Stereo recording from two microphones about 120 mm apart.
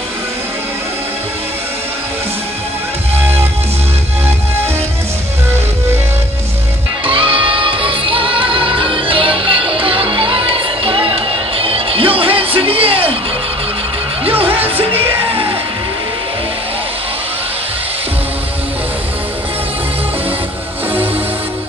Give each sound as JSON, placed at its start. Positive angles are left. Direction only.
{"t": 7.1, "sound": "music", "side_deg": -50}